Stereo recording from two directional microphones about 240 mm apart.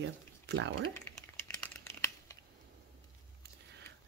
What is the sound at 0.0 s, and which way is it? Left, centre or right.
Speech, right.